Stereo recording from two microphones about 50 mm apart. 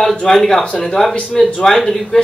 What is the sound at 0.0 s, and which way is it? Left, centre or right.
A man's voice, centre.